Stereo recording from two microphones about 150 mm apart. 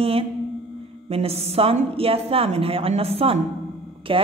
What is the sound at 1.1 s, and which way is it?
A woman's voice, 40° right (ahead or behind).